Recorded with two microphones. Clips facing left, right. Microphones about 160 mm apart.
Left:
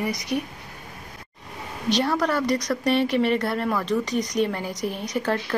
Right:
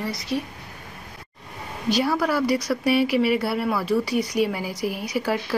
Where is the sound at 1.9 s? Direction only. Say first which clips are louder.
Right 1 dB; 5° right (ahead or behind).